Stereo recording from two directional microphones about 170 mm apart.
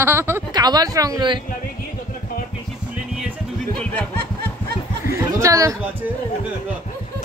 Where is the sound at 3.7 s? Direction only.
10° left (ahead or behind).